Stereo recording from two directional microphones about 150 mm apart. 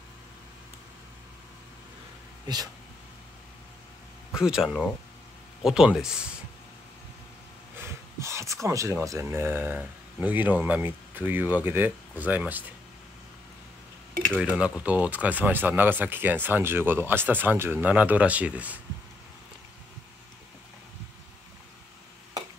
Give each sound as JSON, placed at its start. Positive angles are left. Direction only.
{"t": 2.4, "sound": "speech", "side_deg": -25}
{"t": 4.3, "sound": "speech", "side_deg": -5}
{"t": 7.8, "sound": "speech", "side_deg": -20}
{"t": 14.4, "sound": "speech", "side_deg": -10}